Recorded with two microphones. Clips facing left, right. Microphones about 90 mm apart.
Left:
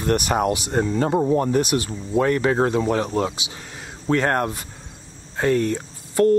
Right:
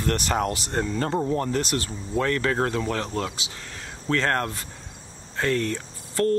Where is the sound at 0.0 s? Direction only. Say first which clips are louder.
Left 4 dB; 15° left (ahead or behind).